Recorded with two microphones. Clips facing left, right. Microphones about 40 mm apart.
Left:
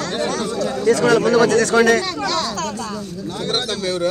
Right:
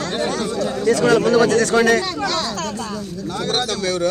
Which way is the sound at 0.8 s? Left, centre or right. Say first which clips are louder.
Left 1 dB; left.